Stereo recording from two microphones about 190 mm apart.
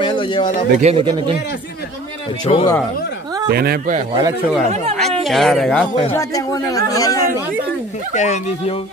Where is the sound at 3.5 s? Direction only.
55° right (ahead or behind).